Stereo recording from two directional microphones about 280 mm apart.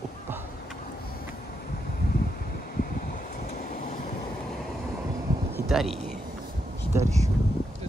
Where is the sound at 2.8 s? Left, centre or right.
Left.